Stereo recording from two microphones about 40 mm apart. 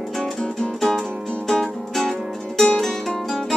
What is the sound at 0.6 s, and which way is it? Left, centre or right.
Music, centre.